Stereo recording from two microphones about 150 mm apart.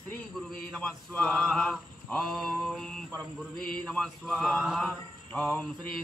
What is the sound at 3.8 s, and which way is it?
Speech, centre (ahead or behind).